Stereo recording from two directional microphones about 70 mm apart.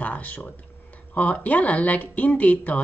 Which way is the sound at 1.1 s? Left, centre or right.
Left.